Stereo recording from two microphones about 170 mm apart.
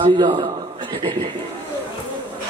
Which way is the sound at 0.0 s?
25° right (ahead or behind).